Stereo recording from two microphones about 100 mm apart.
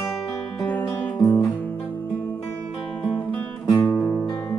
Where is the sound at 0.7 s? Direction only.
15° left (ahead or behind).